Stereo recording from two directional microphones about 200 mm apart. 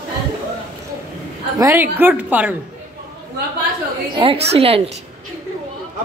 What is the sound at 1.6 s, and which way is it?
Speech, 10° right (ahead or behind).